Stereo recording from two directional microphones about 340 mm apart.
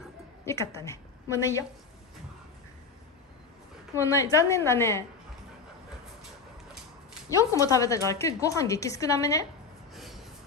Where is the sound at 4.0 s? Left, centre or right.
Centre.